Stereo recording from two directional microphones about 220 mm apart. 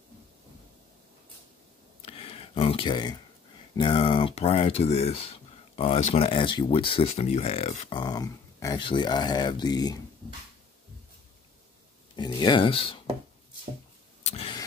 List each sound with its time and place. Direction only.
2.0 s a sound: 25° left (ahead or behind)
3.7 s speech: 25° left (ahead or behind)
7.9 s speech: 20° left (ahead or behind)
12.2 s speech: 20° left (ahead or behind)
14.2 s vehicle: 25° left (ahead or behind)